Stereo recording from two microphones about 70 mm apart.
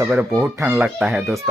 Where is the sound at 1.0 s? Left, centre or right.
Centre.